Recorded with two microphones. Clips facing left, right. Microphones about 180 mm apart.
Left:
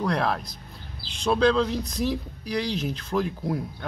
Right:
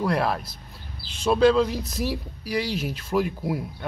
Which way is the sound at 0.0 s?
5° right (ahead or behind).